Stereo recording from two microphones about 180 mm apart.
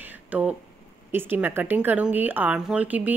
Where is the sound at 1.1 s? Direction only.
10° right (ahead or behind).